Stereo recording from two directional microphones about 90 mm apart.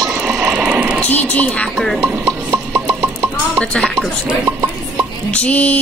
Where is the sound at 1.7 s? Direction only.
5° left (ahead or behind).